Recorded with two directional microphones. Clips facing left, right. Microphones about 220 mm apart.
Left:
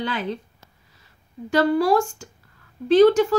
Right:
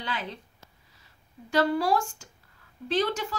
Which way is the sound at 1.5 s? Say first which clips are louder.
Left 6 dB; 50° left (ahead or behind).